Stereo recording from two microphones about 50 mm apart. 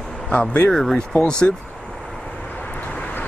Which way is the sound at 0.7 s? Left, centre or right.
Centre.